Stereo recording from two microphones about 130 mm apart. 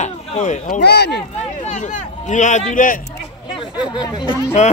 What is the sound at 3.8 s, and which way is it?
Speech, 35° left (ahead or behind).